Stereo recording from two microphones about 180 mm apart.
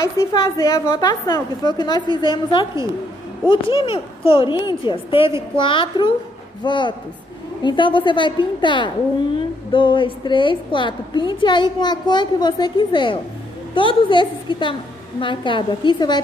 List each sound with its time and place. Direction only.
0.0 s a woman's voice: 20° left (ahead or behind)